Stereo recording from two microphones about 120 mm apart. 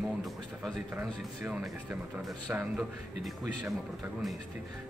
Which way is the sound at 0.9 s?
15° right (ahead or behind).